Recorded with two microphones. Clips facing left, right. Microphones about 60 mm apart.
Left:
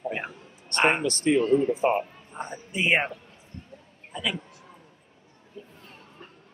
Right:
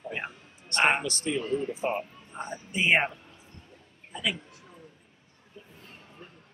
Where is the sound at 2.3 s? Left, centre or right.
Centre.